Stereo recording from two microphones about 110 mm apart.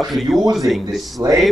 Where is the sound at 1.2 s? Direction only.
25° right (ahead or behind).